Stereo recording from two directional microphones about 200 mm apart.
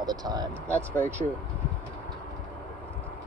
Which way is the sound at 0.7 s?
10° left (ahead or behind).